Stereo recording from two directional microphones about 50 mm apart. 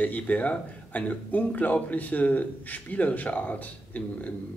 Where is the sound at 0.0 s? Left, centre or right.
Left.